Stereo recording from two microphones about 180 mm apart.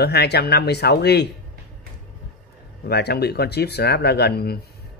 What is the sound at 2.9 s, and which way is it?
Speech, 65° left (ahead or behind).